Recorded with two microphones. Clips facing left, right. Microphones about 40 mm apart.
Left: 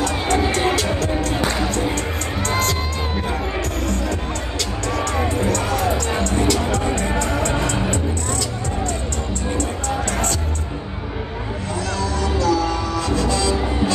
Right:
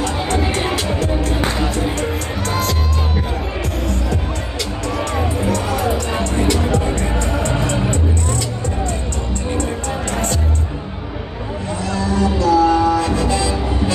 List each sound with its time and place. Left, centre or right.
0.5 s music: centre
2.0 s music: centre
4.6 s music: centre
11.8 s music: right